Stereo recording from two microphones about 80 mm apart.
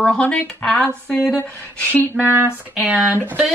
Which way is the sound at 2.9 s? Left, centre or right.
Right.